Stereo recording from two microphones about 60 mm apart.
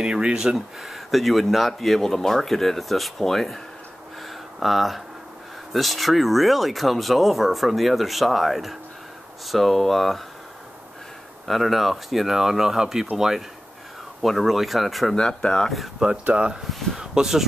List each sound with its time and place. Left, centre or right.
0.0 s speech: centre
4.2 s a sound: centre
5.7 s speech: centre
11.4 s speech: centre
14.2 s speech: centre
15.1 s speech: centre
16.0 s speech: centre